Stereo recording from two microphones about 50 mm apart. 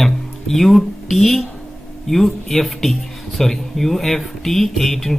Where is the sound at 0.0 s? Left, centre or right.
Centre.